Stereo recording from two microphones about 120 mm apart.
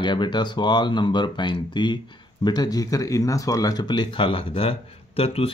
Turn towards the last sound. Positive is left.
turn(degrees=55)  # may be behind; listen again after turning